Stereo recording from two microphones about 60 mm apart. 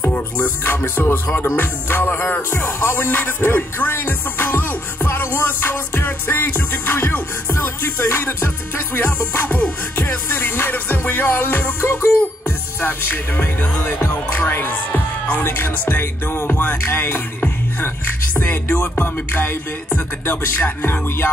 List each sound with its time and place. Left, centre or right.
0.8 s music: left
2.5 s music: left
14.5 s speech: left
15.4 s music: left
15.7 s music: left
16.0 s music: left